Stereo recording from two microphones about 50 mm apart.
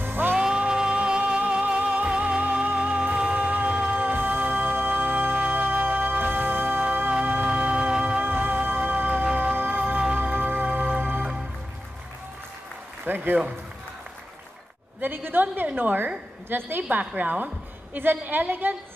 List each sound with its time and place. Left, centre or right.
0.0 s music: right
0.4 s music: centre
4.0 s music: right
8.2 s music: right
13.0 s a man's voice: right
15.0 s a woman's voice: right
17.0 s a woman's voice: right